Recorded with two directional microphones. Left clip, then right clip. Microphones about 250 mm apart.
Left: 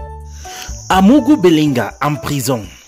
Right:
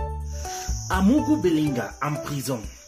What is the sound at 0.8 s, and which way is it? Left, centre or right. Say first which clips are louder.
Speech: left 12 dB; left.